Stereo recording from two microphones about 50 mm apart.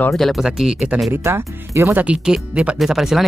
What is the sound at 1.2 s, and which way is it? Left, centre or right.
Speech, right.